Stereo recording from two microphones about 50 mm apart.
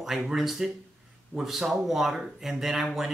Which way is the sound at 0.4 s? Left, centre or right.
Centre.